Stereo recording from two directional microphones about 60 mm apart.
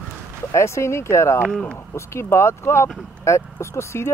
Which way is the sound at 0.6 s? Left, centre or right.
Left.